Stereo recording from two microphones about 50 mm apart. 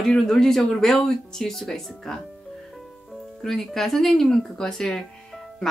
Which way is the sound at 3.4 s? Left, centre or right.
Centre.